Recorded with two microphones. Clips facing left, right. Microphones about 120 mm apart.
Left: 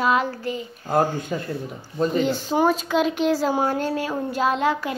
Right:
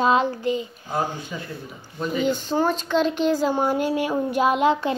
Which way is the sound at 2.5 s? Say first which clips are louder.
Left 3 dB; 10° left (ahead or behind).